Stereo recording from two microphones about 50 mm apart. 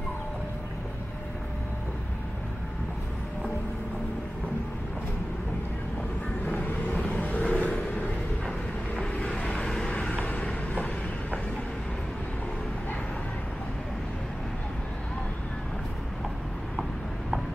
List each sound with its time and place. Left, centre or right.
6.9 s vehicle: left
10.1 s vehicle: left